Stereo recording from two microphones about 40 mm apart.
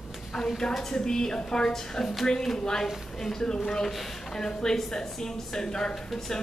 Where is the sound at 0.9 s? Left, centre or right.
Centre.